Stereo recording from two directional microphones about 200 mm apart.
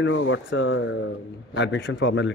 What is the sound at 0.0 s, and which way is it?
Speech, 75° left (ahead or behind).